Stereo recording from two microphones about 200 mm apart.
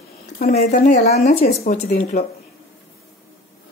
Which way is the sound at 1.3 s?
50° left (ahead or behind).